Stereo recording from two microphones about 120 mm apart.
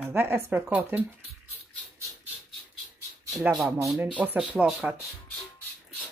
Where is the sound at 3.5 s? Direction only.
5° right (ahead or behind).